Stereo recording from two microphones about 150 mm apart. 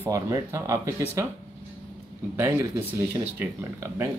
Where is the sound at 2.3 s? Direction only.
20° right (ahead or behind).